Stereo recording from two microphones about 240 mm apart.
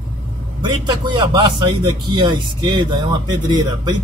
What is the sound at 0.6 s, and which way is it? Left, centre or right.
A man's voice, centre.